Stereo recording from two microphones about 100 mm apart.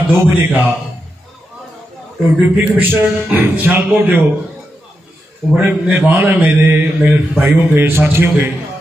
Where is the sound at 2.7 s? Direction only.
20° right (ahead or behind).